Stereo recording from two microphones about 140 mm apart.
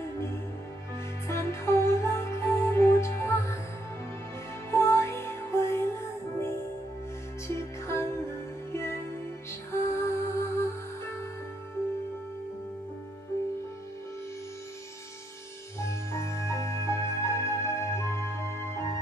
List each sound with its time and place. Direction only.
1.2 s music: 20° left (ahead or behind)
4.6 s music: 20° left (ahead or behind)
15.8 s music: 20° left (ahead or behind)